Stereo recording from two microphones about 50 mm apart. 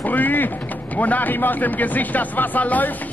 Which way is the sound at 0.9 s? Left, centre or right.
Left.